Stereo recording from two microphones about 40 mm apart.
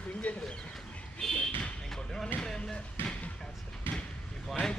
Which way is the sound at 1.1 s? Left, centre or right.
Centre.